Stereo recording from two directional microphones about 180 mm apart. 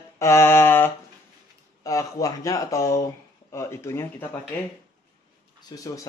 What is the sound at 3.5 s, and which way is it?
Mantra, 15° left (ahead or behind).